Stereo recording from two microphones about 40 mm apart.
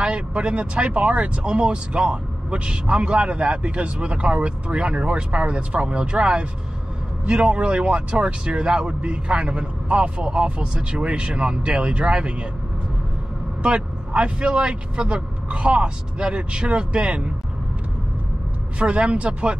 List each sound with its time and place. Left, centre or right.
0.0 s speech: right
13.6 s speech: right
18.8 s speech: right